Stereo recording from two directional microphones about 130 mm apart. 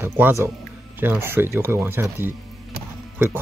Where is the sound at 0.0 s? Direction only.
20° right (ahead or behind).